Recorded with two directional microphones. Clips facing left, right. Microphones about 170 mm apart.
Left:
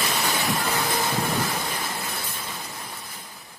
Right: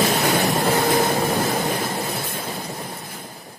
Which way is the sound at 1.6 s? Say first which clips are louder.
Right 7 dB; 45° right (ahead or behind).